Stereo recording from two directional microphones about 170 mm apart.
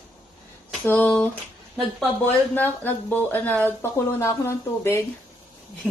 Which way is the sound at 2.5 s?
10° left (ahead or behind).